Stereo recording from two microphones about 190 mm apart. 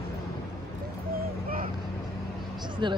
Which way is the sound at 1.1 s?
50° right (ahead or behind).